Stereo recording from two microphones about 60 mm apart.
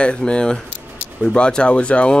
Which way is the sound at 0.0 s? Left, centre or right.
Centre.